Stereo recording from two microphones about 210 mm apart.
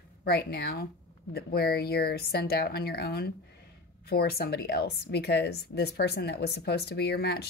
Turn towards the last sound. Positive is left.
turn(degrees=50)  # may be behind; listen again after turning